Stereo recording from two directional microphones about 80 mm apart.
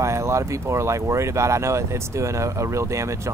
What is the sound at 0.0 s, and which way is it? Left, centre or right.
Speech, right.